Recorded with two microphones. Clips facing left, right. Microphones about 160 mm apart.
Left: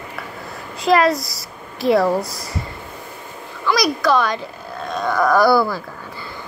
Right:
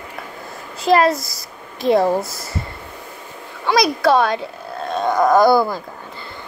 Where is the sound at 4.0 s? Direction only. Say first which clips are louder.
Right 3 dB; 60° right (ahead or behind).